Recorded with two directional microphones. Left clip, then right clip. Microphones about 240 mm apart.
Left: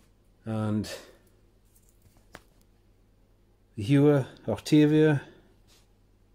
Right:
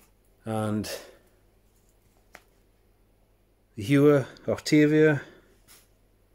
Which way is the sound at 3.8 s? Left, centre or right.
Centre.